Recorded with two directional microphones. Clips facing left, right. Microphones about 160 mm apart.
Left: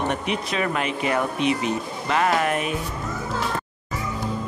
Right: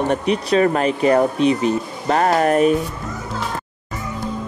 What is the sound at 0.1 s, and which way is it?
Speech, 35° right (ahead or behind).